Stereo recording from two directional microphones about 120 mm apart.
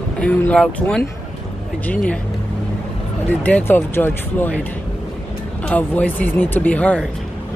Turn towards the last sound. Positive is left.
turn(degrees=10)  # may be behind; listen again after turning